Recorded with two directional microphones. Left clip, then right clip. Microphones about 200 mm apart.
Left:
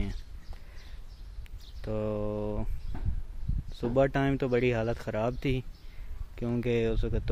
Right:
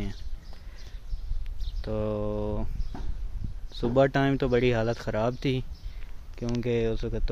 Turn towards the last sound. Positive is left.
turn(degrees=20)  # may be behind; listen again after turning